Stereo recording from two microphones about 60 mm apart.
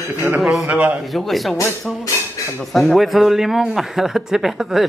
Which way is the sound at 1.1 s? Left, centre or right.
Centre.